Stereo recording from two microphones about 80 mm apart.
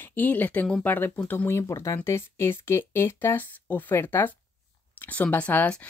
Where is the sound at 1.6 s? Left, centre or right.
Left.